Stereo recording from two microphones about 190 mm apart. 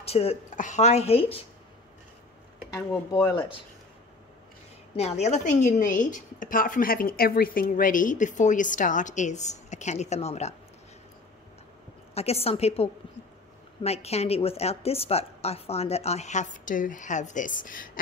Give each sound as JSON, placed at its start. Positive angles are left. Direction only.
{"t": 0.0, "sound": "a woman's voice", "side_deg": 30}
{"t": 2.7, "sound": "speech", "side_deg": 20}
{"t": 4.9, "sound": "a woman's voice", "side_deg": 35}
{"t": 12.1, "sound": "a woman's voice", "side_deg": 35}